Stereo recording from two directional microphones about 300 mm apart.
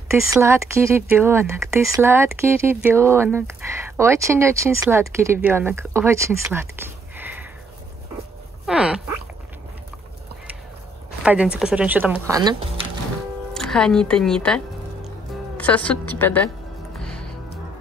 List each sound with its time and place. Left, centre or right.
0.1 s speech: centre
8.6 s a sound: centre
11.2 s speech: centre
13.5 s a woman's voice: centre